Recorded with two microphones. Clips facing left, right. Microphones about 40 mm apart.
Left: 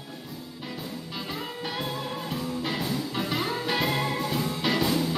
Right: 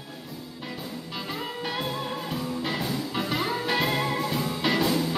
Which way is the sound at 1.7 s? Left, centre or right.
Centre.